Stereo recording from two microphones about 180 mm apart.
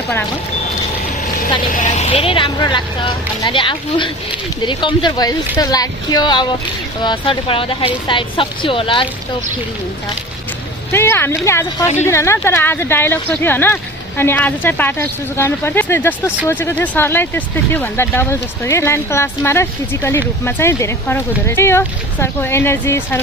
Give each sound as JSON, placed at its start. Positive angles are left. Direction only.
{"t": 1.4, "sound": "speech", "side_deg": 45}
{"t": 10.9, "sound": "speech", "side_deg": 15}